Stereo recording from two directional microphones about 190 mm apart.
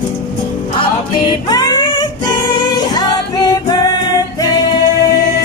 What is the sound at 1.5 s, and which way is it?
Music, 20° left (ahead or behind).